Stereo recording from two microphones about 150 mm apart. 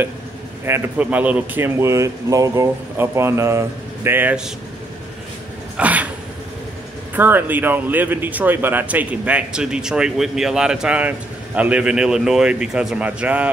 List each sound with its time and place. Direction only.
0.7 s speech: 15° right (ahead or behind)
5.8 s a sound: 10° right (ahead or behind)
7.2 s speech: 10° right (ahead or behind)